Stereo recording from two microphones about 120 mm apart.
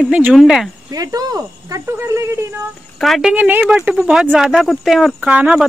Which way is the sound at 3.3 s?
15° right (ahead or behind).